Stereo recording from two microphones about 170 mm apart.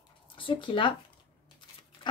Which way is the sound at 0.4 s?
30° left (ahead or behind).